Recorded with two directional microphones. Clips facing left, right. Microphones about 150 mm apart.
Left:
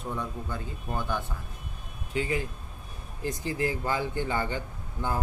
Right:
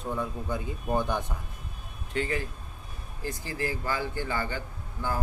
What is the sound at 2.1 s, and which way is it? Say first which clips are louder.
A man's voice: left 1 dB; 15° left (ahead or behind).